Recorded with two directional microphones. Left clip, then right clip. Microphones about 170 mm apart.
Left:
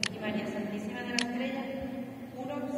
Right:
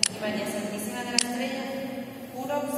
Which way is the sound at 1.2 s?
50° right (ahead or behind).